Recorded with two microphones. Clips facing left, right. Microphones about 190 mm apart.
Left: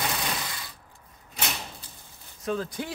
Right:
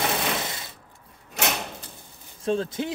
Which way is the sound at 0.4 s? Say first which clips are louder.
Right 4 dB; 25° right (ahead or behind).